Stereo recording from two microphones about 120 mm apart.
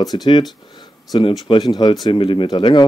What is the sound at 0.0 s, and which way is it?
Speech, 35° left (ahead or behind).